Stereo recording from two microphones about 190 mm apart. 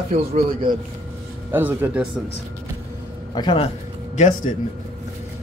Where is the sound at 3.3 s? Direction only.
25° left (ahead or behind).